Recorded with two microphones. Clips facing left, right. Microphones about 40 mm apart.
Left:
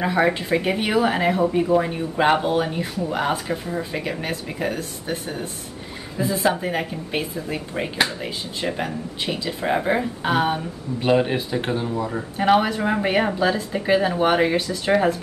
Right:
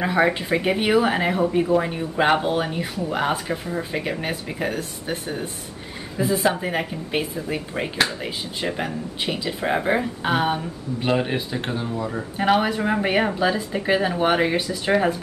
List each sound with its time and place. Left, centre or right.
0.0 s speech: centre
4.7 s speech: centre
6.1 s speech: centre